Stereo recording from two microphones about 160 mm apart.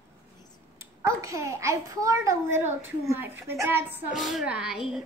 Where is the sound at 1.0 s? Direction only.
20° right (ahead or behind).